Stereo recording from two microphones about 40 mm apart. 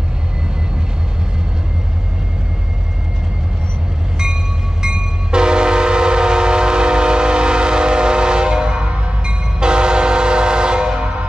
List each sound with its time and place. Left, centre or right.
4.8 s train: centre